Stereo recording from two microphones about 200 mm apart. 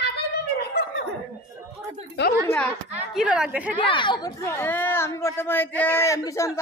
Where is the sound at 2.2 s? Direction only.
60° left (ahead or behind).